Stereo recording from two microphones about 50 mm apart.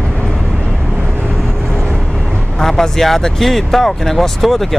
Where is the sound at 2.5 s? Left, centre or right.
Centre.